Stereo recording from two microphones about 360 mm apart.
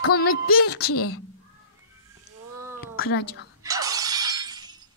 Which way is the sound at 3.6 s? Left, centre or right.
Centre.